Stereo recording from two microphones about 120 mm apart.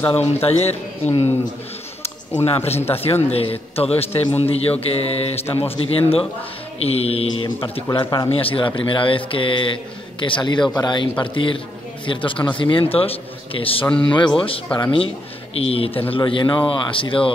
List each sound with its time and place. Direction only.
0.1 s a man's voice: 55° left (ahead or behind)
2.6 s a man's voice: 60° left (ahead or behind)
7.4 s a man's voice: 45° left (ahead or behind)
13.8 s speech: 10° left (ahead or behind)
14.1 s a man's voice: 45° left (ahead or behind)